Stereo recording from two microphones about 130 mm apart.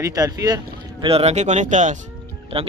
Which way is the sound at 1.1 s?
50° right (ahead or behind).